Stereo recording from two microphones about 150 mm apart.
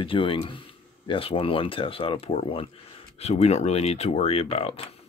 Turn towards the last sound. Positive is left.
turn(degrees=40)  # may be behind; listen again after turning